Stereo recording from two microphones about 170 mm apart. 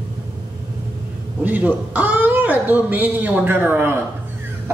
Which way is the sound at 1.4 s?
10° right (ahead or behind).